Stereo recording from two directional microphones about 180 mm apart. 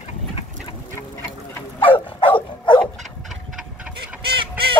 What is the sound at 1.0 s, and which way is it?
Duck, 15° left (ahead or behind).